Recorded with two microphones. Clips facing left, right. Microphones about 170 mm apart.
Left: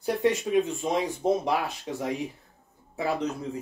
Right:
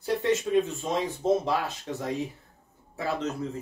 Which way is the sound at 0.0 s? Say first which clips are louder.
Left 1 dB; 15° left (ahead or behind).